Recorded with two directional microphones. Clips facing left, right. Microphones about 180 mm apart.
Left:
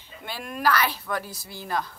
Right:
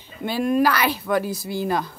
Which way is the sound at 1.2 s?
75° right (ahead or behind).